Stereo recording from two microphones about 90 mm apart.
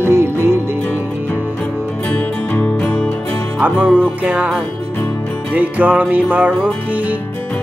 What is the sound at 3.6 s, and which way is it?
Music, 15° right (ahead or behind).